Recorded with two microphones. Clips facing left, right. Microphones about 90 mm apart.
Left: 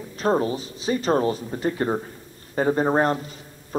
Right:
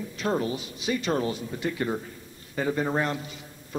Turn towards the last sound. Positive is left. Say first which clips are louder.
# left 6 dB
turn(degrees=40)  # may be behind; listen again after turning